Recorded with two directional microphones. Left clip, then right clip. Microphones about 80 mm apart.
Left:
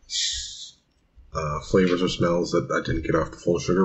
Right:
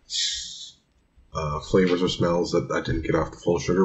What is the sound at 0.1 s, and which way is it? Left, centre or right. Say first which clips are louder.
Snort: even; centre.